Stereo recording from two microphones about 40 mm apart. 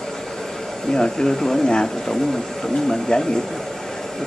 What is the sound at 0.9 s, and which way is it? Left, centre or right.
Speech, centre.